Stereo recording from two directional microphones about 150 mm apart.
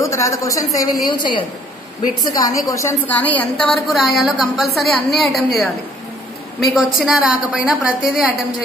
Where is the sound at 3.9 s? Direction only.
Centre (ahead or behind).